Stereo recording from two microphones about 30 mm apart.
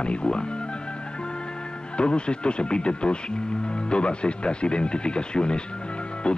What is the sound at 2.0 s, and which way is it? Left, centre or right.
Speech, left.